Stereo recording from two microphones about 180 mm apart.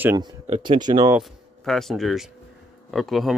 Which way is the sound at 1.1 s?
Centre (ahead or behind).